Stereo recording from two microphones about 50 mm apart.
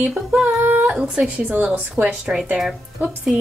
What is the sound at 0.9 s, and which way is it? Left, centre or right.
Speech, centre.